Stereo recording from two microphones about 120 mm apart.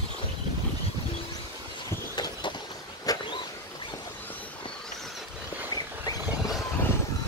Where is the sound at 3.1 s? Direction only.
30° left (ahead or behind).